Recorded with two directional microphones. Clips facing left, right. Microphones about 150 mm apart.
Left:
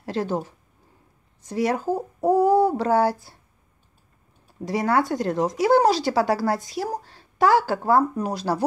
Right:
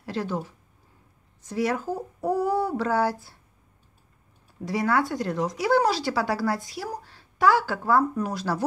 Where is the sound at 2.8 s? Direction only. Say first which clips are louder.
Left 4 dB; 35° left (ahead or behind).